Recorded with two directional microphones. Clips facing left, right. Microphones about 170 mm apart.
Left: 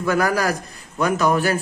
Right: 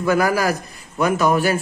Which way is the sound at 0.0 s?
10° right (ahead or behind).